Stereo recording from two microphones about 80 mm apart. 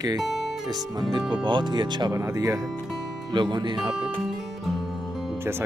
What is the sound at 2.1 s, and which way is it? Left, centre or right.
Speech, right.